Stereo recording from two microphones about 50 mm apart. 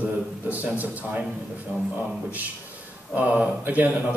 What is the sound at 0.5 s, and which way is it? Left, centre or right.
Speech, right.